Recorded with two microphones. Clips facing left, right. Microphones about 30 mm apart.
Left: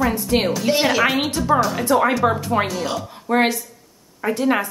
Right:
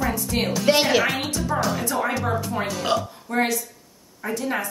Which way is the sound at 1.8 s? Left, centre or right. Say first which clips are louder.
Left 7 dB; left.